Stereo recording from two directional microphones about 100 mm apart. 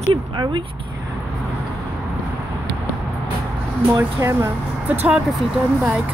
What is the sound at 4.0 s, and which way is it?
Speech, 30° right (ahead or behind).